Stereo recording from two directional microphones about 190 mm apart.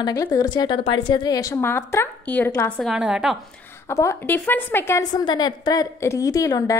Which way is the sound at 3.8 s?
15° left (ahead or behind).